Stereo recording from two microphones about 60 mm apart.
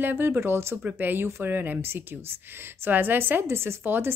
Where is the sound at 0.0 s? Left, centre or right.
Right.